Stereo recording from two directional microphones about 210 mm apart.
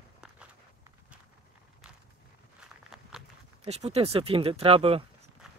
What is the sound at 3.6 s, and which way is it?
Speech, 30° right (ahead or behind).